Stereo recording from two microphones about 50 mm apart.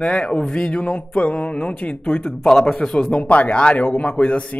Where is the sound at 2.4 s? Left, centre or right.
Centre; by 4.6 s left.